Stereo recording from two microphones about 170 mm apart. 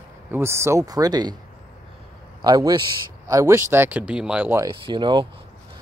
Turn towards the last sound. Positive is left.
turn(degrees=-30)  # may be behind; listen again after turning